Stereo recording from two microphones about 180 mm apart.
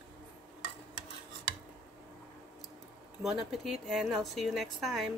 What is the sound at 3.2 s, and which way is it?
A woman's voice, centre (ahead or behind).